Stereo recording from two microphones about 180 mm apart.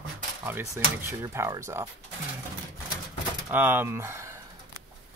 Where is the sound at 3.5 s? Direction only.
10° right (ahead or behind).